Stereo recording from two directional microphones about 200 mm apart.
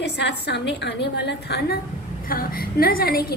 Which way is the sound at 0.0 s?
55° left (ahead or behind).